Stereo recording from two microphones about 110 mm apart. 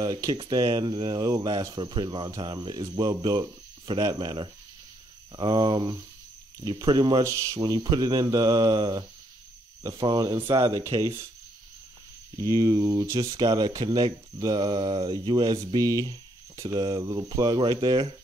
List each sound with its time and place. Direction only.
0.0 s speech: 35° right (ahead or behind)
0.8 s speech: 45° right (ahead or behind)
1.8 s speech: 45° right (ahead or behind)
7.2 s speech: 30° right (ahead or behind)
10.6 s speech: 30° right (ahead or behind)
12.4 s speech: 30° right (ahead or behind)
16.1 s a sound: 35° right (ahead or behind)
16.8 s speech: 35° right (ahead or behind)